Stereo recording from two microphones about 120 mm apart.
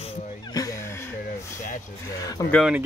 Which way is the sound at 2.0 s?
30° left (ahead or behind).